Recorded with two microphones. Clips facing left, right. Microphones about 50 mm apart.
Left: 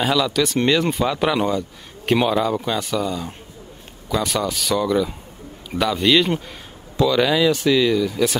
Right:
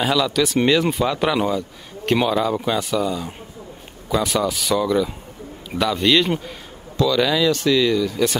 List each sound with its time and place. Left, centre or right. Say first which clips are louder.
0.0 s speech: even; centre
7.0 s speech: left 1 dB; centre